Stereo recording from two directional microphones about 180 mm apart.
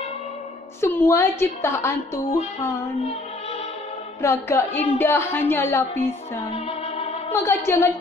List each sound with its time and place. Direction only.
0.7 s a woman's voice: 10° left (ahead or behind)
4.2 s a woman's voice: 15° left (ahead or behind)
6.5 s music: 35° left (ahead or behind)
7.4 s a woman's voice: 15° left (ahead or behind)